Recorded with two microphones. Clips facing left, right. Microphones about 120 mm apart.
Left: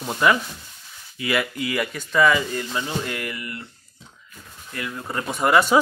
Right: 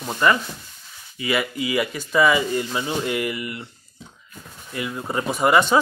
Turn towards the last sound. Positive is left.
turn(degrees=-5)  # may be behind; listen again after turning